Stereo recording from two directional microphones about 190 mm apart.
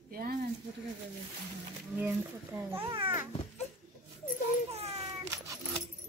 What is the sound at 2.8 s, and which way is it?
Speech, 25° right (ahead or behind).